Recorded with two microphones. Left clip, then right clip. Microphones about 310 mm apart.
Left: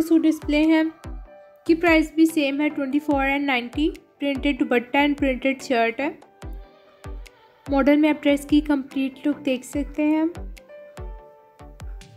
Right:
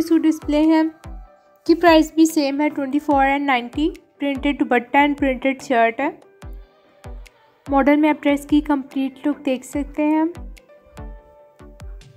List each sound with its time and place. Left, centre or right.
0.0 s a woman's voice: centre
1.9 s a woman's voice: right
2.5 s a woman's voice: centre
7.6 s a woman's voice: centre